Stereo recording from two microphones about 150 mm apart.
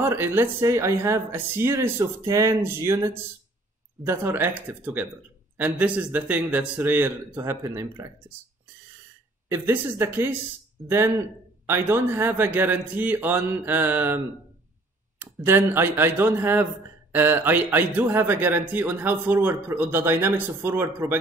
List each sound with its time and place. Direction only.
0.0 s speech: 15° right (ahead or behind)
9.5 s speech: 15° right (ahead or behind)